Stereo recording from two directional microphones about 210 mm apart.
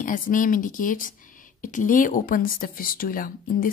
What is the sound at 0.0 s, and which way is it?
Speech, 40° left (ahead or behind).